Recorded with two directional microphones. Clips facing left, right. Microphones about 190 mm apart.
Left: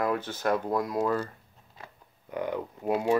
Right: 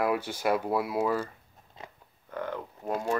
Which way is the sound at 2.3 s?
15° left (ahead or behind).